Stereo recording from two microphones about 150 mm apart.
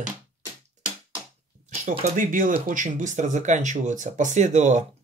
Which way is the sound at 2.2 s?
65° right (ahead or behind).